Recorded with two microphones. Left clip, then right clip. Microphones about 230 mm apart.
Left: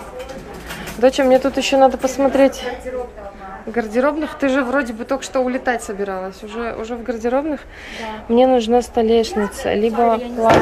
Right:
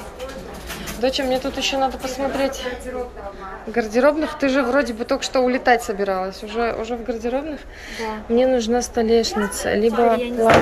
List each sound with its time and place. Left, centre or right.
1.0 s a woman's voice: centre
3.7 s a woman's voice: centre